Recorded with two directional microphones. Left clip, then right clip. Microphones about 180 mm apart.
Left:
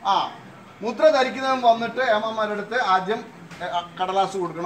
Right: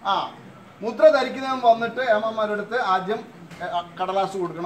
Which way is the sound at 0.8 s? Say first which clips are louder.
Right 1 dB; 15° right (ahead or behind).